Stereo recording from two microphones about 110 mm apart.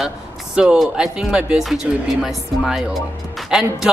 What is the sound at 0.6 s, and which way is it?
Speech, 10° right (ahead or behind).